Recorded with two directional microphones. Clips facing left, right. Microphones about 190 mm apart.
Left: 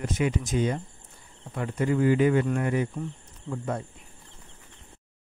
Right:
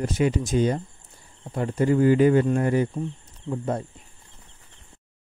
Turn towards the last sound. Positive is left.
turn(degrees=-30)  # may be behind; listen again after turning